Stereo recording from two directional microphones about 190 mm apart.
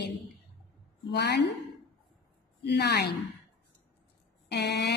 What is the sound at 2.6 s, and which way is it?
Speech, 60° left (ahead or behind).